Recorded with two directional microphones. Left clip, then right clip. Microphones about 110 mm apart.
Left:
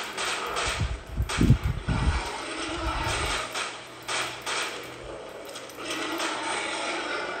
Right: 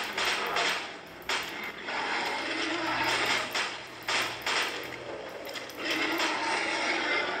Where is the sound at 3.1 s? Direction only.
45° right (ahead or behind).